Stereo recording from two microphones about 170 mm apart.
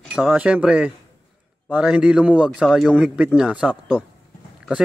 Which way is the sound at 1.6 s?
5° right (ahead or behind).